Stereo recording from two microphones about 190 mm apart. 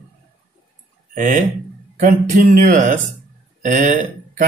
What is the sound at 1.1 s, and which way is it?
Speech, 45° right (ahead or behind).